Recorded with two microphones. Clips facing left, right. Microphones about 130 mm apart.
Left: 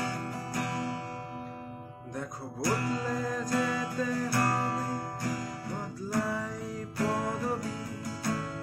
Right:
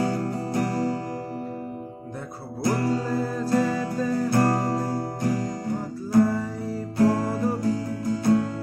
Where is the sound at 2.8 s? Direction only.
35° right (ahead or behind).